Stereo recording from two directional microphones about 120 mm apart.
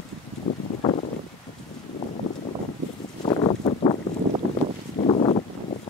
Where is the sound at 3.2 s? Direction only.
50° left (ahead or behind).